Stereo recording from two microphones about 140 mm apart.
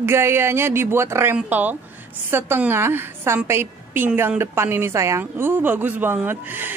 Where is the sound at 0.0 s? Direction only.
20° right (ahead or behind).